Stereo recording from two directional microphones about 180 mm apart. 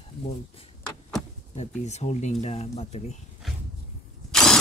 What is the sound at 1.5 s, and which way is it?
Speech, 40° left (ahead or behind).